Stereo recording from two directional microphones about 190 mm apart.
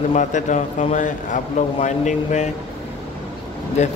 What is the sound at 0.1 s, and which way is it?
A man's voice, 40° left (ahead or behind).